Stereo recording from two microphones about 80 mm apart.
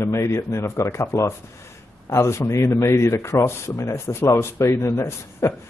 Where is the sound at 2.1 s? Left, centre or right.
Left.